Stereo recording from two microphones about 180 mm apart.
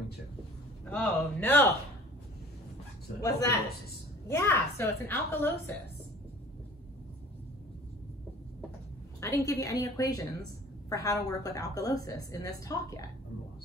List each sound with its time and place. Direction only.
0.8 s a woman's voice: 10° left (ahead or behind)
3.2 s a woman's voice: 20° left (ahead or behind)
9.2 s a woman's voice: 15° left (ahead or behind)